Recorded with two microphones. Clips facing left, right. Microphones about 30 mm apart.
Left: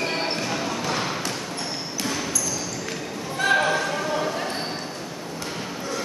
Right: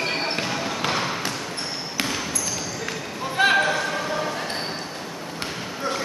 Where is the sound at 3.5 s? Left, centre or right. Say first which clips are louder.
Even; centre.